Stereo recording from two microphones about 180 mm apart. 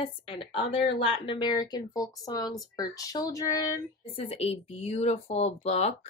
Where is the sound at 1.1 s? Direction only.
25° left (ahead or behind).